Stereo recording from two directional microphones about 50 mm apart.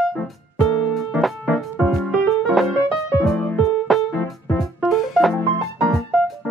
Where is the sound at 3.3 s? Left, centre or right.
Left.